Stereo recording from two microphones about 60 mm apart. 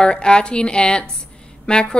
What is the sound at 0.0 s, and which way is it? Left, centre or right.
A woman's voice, centre.